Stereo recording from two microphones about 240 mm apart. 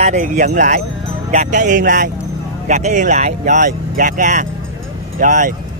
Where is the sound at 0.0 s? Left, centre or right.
Right.